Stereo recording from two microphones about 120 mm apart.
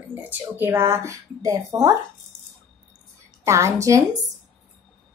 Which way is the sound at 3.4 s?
25° right (ahead or behind).